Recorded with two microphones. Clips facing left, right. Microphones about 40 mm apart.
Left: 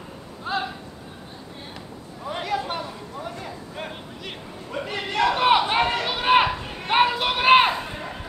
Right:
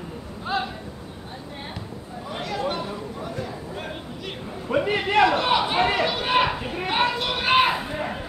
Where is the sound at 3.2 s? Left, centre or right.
Centre.